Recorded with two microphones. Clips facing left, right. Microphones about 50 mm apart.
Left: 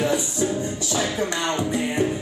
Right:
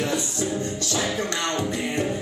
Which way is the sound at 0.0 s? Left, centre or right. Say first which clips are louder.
Left 3 dB; centre.